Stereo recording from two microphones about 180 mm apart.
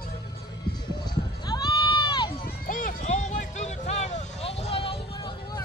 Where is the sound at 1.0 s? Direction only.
25° left (ahead or behind).